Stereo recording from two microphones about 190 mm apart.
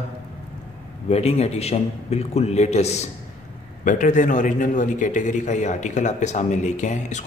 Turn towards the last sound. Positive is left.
turn(degrees=40)  # may be behind; listen again after turning